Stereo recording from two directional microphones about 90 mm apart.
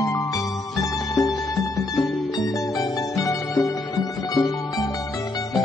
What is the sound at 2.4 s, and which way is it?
Music, 40° left (ahead or behind).